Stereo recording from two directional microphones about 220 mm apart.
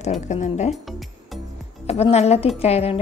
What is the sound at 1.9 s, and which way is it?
Speech, 30° left (ahead or behind).